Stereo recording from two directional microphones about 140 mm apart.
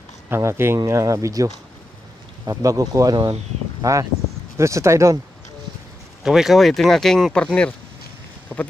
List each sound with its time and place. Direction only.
0.3 s speech: 20° right (ahead or behind)
6.2 s speech: centre (ahead or behind)
8.5 s speech: 10° right (ahead or behind)